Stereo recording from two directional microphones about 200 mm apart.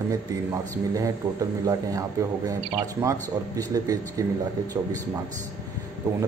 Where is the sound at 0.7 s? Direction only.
15° right (ahead or behind).